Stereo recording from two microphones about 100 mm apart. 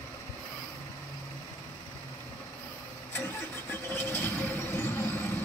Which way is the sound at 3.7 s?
20° left (ahead or behind).